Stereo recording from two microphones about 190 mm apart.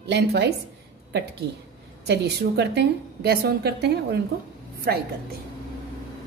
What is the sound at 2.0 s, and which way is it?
A woman's voice, 60° right (ahead or behind).